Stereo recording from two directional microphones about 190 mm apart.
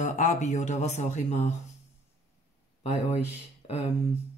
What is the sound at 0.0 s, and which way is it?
Speech, 40° left (ahead or behind).